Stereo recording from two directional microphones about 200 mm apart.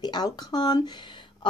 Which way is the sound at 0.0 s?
20° left (ahead or behind).